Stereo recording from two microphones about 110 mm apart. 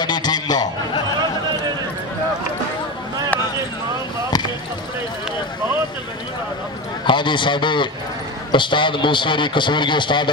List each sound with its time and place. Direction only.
0.0 s a sound: 40° left (ahead or behind)
4.3 s basketball bounce: 40° left (ahead or behind)
7.1 s a man's voice: 45° left (ahead or behind)